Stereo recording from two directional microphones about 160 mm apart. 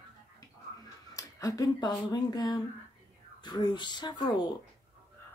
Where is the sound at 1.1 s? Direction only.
20° left (ahead or behind).